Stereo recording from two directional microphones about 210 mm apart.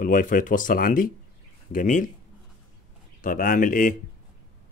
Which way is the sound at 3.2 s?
40° left (ahead or behind).